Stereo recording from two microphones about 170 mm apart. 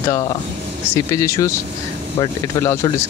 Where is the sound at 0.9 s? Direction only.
20° left (ahead or behind).